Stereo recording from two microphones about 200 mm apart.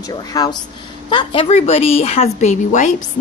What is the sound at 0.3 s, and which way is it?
A woman's voice, 20° left (ahead or behind).